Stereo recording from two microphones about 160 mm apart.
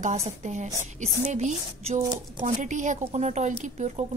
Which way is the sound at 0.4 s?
50° right (ahead or behind).